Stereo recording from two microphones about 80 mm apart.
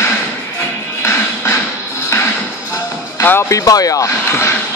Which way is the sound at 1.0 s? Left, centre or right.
Left.